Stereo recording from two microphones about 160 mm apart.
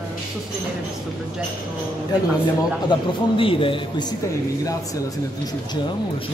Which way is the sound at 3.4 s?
35° left (ahead or behind).